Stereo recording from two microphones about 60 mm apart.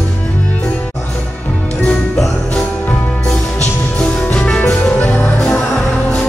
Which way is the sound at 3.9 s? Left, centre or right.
Centre.